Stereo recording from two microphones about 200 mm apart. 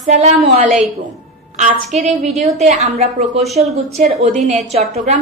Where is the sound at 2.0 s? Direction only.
35° right (ahead or behind).